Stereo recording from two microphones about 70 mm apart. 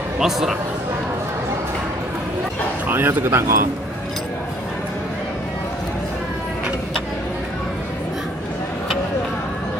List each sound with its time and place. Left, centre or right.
0.2 s speech: centre
2.9 s a man's voice: right